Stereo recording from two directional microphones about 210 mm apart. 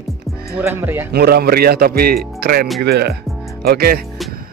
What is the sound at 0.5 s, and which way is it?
Speech, 10° right (ahead or behind).